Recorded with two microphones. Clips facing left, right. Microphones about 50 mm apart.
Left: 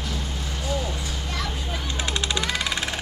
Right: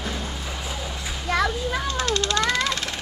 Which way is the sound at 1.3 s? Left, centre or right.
Right.